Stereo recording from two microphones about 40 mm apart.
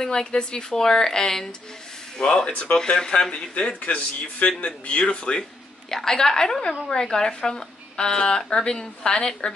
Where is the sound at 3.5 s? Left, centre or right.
Left.